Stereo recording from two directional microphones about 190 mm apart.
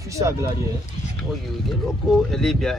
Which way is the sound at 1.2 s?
Centre (ahead or behind).